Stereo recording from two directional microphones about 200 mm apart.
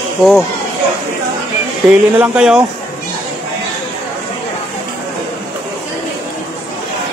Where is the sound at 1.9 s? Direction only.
5° right (ahead or behind).